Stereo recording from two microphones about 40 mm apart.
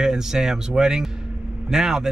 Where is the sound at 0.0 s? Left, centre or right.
Centre.